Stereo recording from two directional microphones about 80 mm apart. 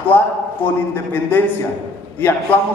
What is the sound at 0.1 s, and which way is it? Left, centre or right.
A man's voice, left.